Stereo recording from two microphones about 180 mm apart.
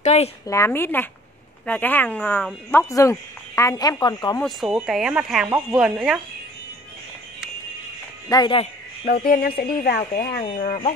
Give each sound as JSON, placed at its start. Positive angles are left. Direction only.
{"t": 0.0, "sound": "a woman's voice", "side_deg": 40}
{"t": 0.5, "sound": "speech", "side_deg": 15}
{"t": 4.4, "sound": "speech", "side_deg": 0}
{"t": 8.3, "sound": "speech", "side_deg": 25}
{"t": 9.0, "sound": "speech", "side_deg": 55}